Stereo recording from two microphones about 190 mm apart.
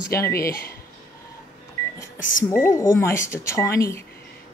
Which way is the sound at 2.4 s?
15° left (ahead or behind).